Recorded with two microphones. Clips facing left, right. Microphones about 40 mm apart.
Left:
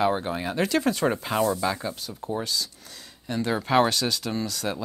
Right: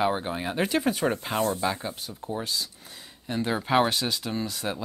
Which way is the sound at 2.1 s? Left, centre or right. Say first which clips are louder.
Left 3 dB; centre.